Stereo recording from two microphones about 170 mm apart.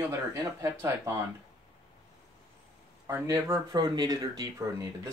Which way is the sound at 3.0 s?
20° right (ahead or behind).